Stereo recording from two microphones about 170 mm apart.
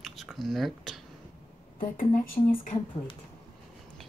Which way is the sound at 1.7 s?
55° left (ahead or behind).